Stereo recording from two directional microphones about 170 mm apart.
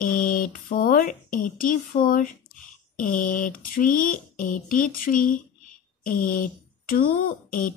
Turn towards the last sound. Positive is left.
turn(degrees=55)  # may be behind; listen again after turning